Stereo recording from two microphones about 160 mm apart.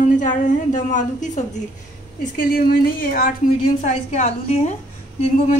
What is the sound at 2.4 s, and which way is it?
Speech, 65° left (ahead or behind).